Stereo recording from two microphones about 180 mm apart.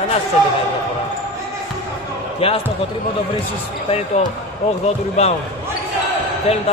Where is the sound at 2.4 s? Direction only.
35° left (ahead or behind).